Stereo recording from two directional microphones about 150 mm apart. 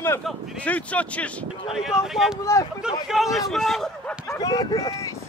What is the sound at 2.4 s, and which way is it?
Speech, 20° left (ahead or behind).